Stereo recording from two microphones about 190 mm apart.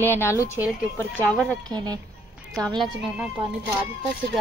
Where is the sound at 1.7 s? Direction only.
20° right (ahead or behind).